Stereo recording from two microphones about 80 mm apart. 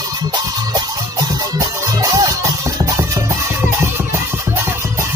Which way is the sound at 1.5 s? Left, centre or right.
Right.